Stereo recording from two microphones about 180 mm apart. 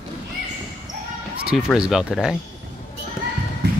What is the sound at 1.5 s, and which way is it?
Speech, 5° right (ahead or behind).